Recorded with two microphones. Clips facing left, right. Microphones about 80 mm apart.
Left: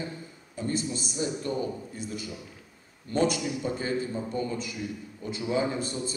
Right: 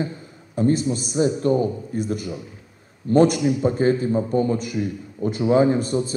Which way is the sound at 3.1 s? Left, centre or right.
Right.